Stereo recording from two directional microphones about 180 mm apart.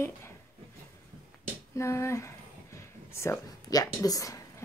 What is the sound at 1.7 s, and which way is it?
Speech, 15° left (ahead or behind).